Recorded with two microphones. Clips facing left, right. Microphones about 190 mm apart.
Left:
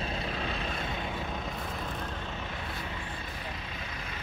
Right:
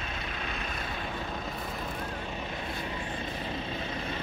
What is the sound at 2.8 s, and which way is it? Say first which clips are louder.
Vehicle: right 4 dB; 25° right (ahead or behind).